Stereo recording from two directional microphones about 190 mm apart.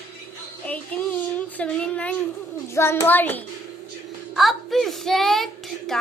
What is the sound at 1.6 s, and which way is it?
A child's voice, 5° left (ahead or behind).